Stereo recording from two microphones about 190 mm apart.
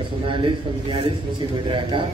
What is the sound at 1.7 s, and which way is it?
Speech, 25° right (ahead or behind).